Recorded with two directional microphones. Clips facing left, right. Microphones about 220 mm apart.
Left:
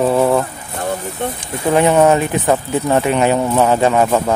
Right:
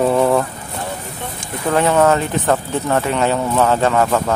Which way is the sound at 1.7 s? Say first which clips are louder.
Left 3 dB; 15° left (ahead or behind).